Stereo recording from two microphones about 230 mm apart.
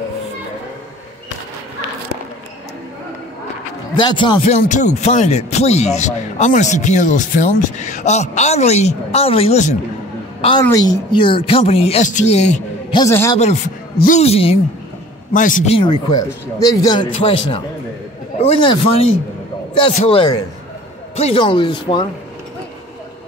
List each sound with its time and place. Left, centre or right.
3.9 s speech: left
10.4 s speech: centre
13.0 s a man's voice: centre
13.9 s speech: left